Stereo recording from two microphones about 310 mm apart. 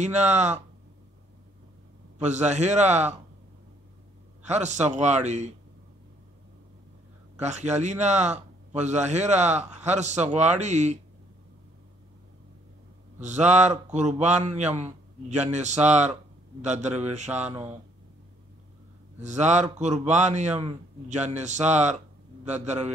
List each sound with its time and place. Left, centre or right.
0.0 s a man's voice: right
2.1 s a man's voice: right
4.5 s a man's voice: right
7.3 s a man's voice: right
13.2 s a man's voice: right
17.5 s speech: centre
19.2 s a man's voice: right